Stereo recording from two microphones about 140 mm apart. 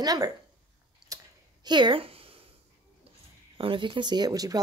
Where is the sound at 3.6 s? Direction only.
35° right (ahead or behind).